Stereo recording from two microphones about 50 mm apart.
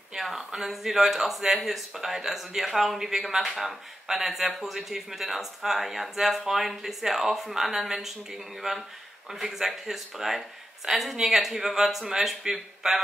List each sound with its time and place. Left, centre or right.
0.2 s speech: centre